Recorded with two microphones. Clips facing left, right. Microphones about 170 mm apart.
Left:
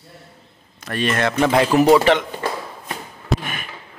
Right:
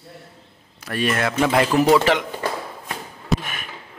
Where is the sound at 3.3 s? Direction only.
Centre (ahead or behind).